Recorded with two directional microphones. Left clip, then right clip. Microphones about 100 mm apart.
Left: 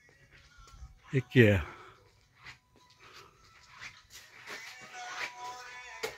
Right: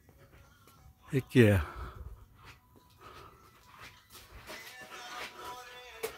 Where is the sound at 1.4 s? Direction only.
25° right (ahead or behind).